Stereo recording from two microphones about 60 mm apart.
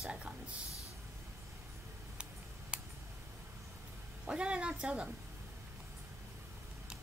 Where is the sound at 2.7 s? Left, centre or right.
Centre.